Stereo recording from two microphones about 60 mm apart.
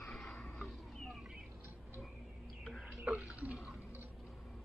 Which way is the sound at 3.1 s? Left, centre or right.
Centre.